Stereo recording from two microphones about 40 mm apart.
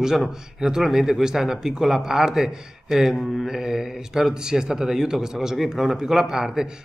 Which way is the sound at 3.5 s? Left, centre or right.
Centre.